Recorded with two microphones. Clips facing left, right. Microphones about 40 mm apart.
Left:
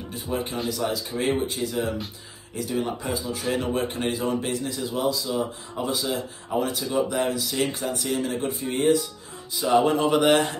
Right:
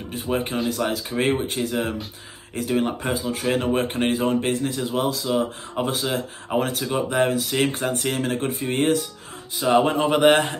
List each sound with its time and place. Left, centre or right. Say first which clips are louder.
0.1 s speech: right 4 dB; right
9.6 s speech: right 1 dB; right
10.3 s speech: right 1 dB; right